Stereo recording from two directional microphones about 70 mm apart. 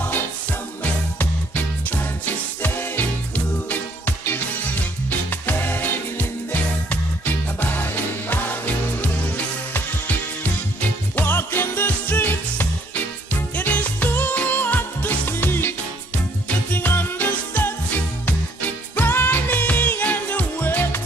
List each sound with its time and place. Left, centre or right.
1.1 s music: left
5.3 s music: left
11.1 s music: left